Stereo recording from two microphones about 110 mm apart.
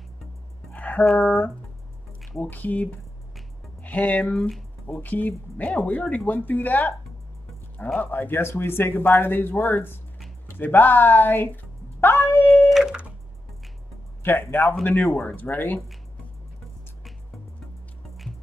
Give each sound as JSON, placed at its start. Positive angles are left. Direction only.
{"t": 0.7, "sound": "a sound", "side_deg": 15}
{"t": 1.2, "sound": "speech", "side_deg": 10}
{"t": 7.9, "sound": "speech", "side_deg": 15}
{"t": 10.5, "sound": "dog", "side_deg": 15}
{"t": 12.4, "sound": "a sound", "side_deg": 0}
{"t": 14.2, "sound": "speech", "side_deg": 20}